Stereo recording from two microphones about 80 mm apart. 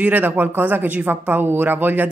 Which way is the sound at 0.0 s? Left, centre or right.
Right.